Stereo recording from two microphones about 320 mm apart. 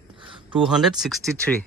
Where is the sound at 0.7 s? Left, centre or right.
Centre.